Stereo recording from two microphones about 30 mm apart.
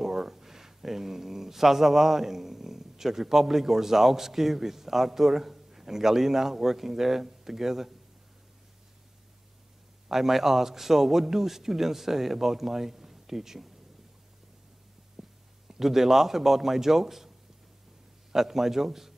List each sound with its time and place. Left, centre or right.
0.0 s speech: centre
10.0 s a man's voice: centre
15.2 s heart sounds: centre
15.7 s a man's voice: centre
18.3 s a man's voice: centre